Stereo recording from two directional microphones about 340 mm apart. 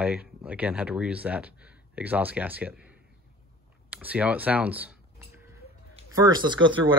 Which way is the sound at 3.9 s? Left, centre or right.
Centre.